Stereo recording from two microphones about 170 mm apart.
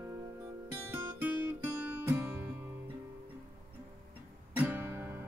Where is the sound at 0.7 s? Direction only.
10° right (ahead or behind).